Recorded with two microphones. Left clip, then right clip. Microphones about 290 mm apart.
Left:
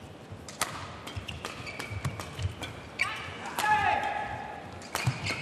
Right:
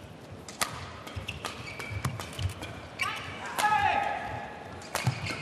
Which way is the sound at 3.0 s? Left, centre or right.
Left.